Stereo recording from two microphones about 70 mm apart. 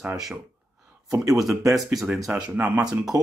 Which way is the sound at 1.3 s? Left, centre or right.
Centre.